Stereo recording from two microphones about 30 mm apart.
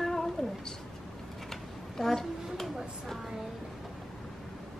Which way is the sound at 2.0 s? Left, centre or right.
Centre.